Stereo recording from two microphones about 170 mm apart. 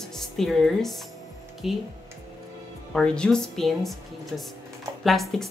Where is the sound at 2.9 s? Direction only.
5° left (ahead or behind).